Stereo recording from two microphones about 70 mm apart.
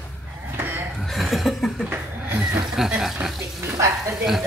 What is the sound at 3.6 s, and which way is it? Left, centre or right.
Speech, right.